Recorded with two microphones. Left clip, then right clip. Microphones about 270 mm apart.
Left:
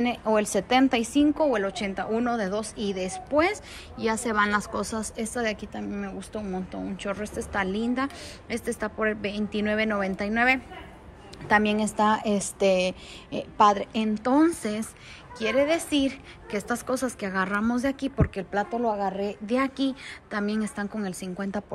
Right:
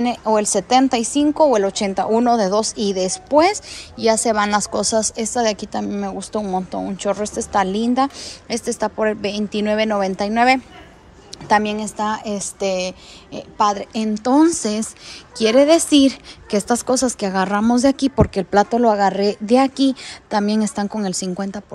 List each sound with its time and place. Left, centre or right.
0.0 s a woman's voice: centre; by 19.5 s right
19.5 s a woman's voice: centre